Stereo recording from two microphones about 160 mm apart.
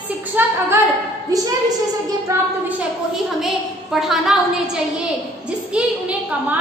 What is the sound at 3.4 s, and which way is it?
A woman's voice, centre (ahead or behind).